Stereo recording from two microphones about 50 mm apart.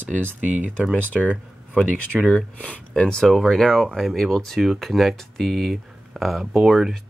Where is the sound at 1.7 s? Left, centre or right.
Centre.